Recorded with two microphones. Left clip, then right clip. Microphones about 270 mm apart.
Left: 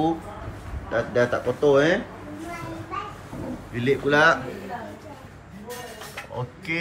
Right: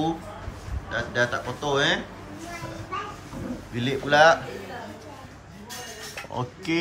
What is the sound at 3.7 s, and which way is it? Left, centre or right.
Speech, centre.